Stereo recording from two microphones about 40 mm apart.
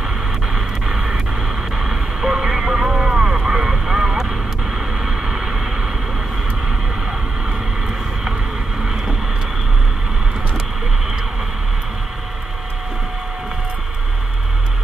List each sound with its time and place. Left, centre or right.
0.6 s a sound: centre
1.8 s vehicle: centre
8.8 s vehicle: centre